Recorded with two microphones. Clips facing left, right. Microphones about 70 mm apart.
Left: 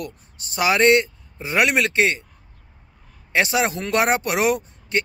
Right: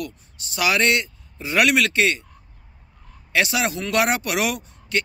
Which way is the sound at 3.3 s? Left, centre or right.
Left.